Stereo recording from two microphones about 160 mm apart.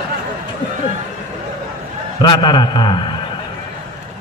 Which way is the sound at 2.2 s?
30° left (ahead or behind).